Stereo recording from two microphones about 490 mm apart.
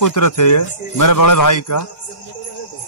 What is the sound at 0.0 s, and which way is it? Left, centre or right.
Speech, left.